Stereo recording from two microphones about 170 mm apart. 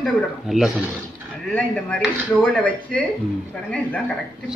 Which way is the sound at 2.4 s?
10° left (ahead or behind).